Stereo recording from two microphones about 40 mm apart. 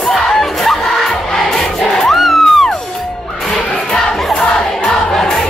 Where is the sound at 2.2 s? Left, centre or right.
Centre.